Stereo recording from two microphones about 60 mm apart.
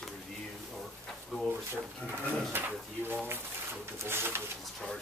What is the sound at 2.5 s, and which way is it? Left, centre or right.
Speech, right.